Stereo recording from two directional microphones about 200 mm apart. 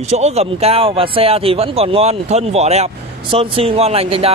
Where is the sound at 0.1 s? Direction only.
30° right (ahead or behind).